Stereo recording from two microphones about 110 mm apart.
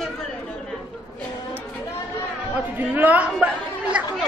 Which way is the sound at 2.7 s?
15° right (ahead or behind).